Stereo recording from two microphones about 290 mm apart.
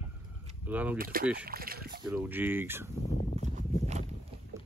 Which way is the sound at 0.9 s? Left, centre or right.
Right.